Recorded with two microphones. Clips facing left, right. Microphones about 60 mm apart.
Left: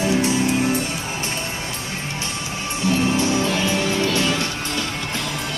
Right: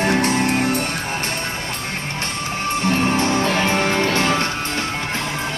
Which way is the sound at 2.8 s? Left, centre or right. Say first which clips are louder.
Even; right.